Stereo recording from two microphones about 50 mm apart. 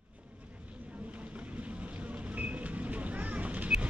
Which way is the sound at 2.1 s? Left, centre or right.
Right.